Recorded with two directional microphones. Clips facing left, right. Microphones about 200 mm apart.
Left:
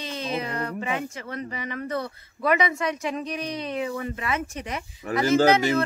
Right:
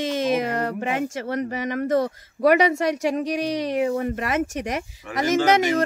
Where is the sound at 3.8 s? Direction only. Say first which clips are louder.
Right 6 dB; 50° right (ahead or behind).